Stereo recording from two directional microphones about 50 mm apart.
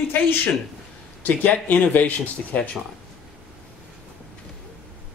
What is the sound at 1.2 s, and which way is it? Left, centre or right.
Speech, left.